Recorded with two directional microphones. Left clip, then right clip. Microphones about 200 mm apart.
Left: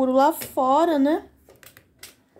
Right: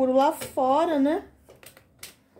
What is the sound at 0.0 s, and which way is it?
Speech, 20° left (ahead or behind).